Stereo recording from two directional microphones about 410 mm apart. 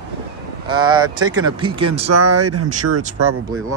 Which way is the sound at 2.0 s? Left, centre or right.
Right.